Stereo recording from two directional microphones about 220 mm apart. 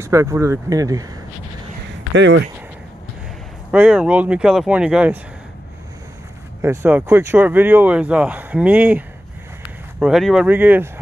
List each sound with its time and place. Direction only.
0.0 s speech: 15° right (ahead or behind)
2.1 s speech: 55° right (ahead or behind)
3.7 s speech: 5° right (ahead or behind)
6.6 s speech: 10° right (ahead or behind)